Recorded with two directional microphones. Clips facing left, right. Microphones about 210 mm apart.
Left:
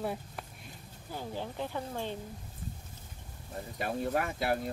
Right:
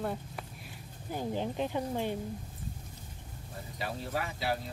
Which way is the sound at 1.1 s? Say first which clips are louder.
Right 5 dB; 15° right (ahead or behind).